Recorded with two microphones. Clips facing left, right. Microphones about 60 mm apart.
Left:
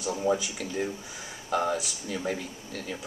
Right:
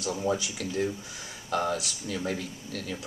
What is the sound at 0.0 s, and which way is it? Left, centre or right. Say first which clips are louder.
Speech: left 2 dB; centre.